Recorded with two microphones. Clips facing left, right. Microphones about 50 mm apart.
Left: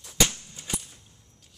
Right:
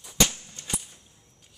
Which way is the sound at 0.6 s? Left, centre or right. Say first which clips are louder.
Left 1 dB; centre.